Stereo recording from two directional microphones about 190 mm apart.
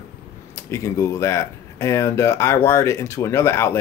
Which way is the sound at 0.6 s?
15° left (ahead or behind).